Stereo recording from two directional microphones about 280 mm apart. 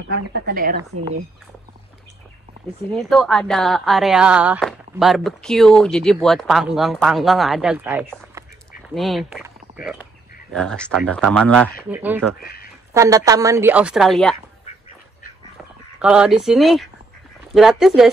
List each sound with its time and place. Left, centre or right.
0.1 s speech: right
2.9 s speech: centre
8.4 s duck: centre
10.5 s speech: centre
11.9 s speech: centre
12.4 s speech: left
12.9 s a woman's voice: centre
15.5 s a sound: centre
17.6 s speech: centre